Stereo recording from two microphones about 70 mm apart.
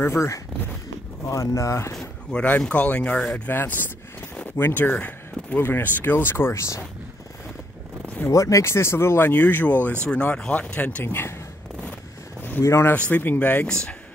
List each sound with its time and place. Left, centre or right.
0.0 s speech: left
2.3 s speech: left
3.2 s speech: centre
3.4 s speech: left
8.3 s speech: left
10.0 s speech: centre
11.1 s speech: left
12.4 s a sound: left
12.6 s speech: left
12.9 s speech: left
13.7 s speech: centre